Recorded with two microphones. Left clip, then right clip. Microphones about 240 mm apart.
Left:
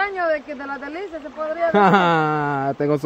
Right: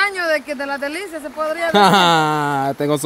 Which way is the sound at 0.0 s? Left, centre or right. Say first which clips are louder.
Right 3 dB; right.